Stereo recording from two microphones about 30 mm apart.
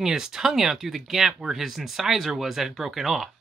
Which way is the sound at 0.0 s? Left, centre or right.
Centre.